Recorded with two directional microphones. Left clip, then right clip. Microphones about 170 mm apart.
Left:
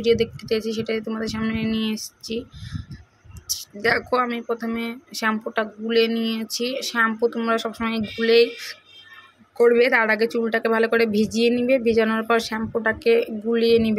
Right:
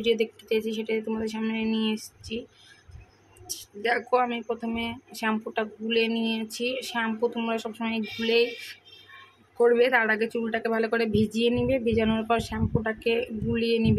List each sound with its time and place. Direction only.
0.0 s speech: 10° left (ahead or behind)
3.4 s a woman's voice: 20° left (ahead or behind)